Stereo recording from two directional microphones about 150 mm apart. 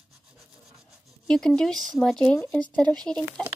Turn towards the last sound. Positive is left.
turn(degrees=5)  # may be behind; listen again after turning